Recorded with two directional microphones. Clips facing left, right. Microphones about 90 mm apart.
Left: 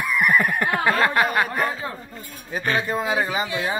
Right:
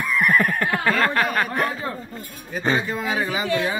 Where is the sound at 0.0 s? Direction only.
10° left (ahead or behind).